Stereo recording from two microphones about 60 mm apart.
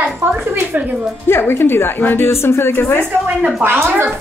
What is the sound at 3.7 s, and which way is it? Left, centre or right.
Speech, right.